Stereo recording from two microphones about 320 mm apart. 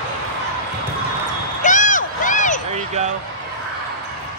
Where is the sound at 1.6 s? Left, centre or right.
Left.